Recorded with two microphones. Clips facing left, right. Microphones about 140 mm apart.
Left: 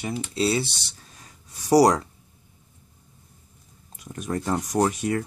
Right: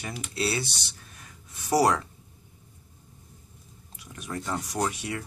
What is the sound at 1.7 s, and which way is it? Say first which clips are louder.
Speech: left 6 dB; 35° left (ahead or behind).